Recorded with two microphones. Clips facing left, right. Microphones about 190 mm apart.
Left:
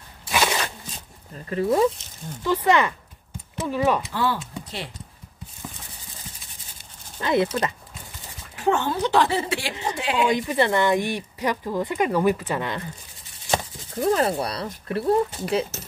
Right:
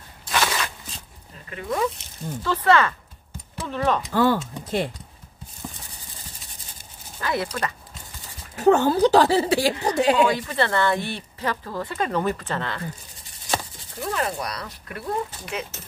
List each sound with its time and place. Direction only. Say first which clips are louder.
0.3 s a sound: left 1 dB; 15° left (ahead or behind)
1.5 s speech: left 6 dB; 30° left (ahead or behind)
2.4 s speech: even; 15° left (ahead or behind)
4.1 s speech: right 5 dB; 50° right (ahead or behind)
7.2 s speech: left 5 dB; 20° left (ahead or behind)
8.5 s a woman's voice: right 6 dB; 40° right (ahead or behind)
10.2 s speech: left 1 dB; 15° left (ahead or behind)
13.9 s speech: left 6 dB; 35° left (ahead or behind)